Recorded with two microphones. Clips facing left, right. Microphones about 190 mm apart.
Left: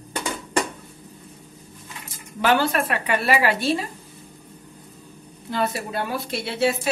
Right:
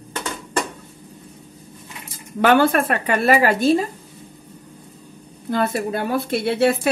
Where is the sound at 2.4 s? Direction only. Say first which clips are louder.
Right 5 dB; 55° right (ahead or behind).